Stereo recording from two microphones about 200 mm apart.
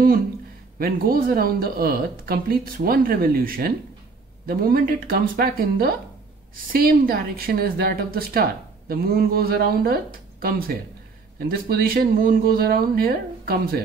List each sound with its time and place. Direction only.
0.7 s speech: 50° right (ahead or behind)
11.3 s speech: 50° right (ahead or behind)